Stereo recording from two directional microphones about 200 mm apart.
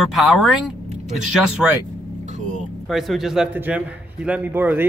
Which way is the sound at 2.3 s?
35° right (ahead or behind).